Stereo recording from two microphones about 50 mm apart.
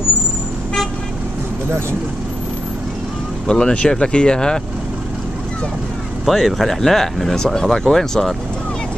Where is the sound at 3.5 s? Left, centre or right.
Centre.